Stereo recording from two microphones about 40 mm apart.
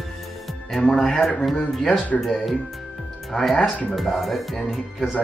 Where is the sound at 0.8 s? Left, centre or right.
Centre.